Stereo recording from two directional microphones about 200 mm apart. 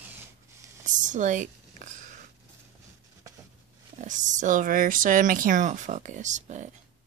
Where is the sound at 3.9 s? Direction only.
40° right (ahead or behind).